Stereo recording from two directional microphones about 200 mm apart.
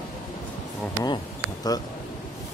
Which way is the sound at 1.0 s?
20° left (ahead or behind).